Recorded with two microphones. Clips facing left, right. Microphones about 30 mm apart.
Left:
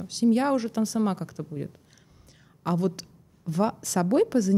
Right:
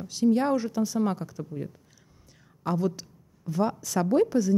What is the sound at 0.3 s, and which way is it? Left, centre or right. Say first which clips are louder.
A woman's voice: left 1 dB; left.